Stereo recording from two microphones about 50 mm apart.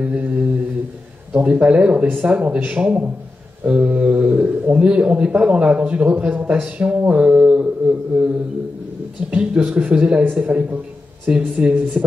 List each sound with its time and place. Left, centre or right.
0.0 s mantra: right
1.3 s speech: right